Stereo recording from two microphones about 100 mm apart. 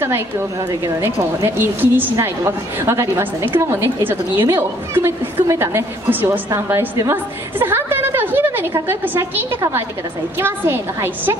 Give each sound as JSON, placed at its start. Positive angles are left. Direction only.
{"t": 0.0, "sound": "a woman's voice", "side_deg": -25}